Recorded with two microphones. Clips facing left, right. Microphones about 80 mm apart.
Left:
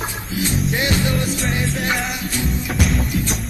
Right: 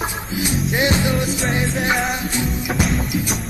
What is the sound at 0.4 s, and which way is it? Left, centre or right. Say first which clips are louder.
Music: right 1 dB; centre.